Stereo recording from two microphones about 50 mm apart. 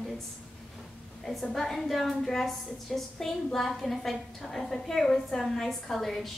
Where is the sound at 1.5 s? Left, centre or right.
Centre.